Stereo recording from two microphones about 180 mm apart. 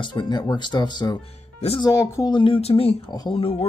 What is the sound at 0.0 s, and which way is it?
Speech, 25° left (ahead or behind).